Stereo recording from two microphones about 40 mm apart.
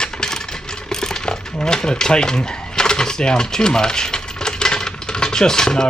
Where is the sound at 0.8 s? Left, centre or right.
Centre.